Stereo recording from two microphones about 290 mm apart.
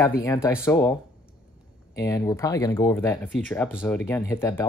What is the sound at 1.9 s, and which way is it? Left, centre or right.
Speech, centre.